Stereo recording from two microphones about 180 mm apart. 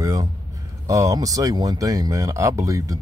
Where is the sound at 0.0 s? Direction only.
20° right (ahead or behind).